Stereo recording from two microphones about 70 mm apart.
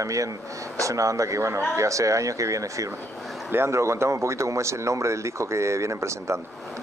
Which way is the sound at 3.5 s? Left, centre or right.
Right.